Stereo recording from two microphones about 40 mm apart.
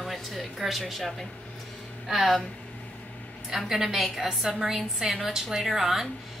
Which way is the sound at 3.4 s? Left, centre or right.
Centre.